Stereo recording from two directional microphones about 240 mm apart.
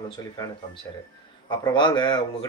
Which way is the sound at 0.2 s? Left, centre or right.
Centre.